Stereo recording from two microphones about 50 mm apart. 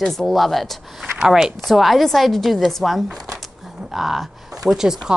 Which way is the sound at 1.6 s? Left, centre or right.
Centre.